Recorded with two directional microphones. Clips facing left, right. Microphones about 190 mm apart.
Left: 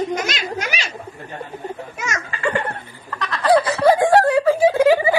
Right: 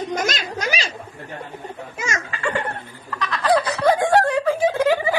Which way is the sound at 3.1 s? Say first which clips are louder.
Left 3 dB; centre (ahead or behind).